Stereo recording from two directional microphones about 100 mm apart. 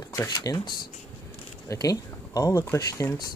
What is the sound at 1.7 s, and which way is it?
Speech, 35° left (ahead or behind).